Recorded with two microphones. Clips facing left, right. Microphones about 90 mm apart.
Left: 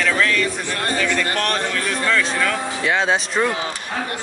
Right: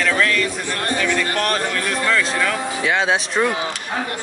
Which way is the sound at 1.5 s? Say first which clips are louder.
Right 1 dB; centre (ahead or behind).